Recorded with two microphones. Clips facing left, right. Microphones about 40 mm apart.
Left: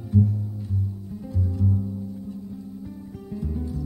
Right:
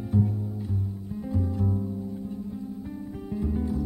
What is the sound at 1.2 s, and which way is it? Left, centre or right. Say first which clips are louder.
Music: even; right.